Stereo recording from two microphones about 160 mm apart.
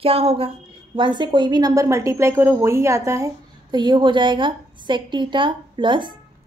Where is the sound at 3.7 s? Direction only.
30° right (ahead or behind).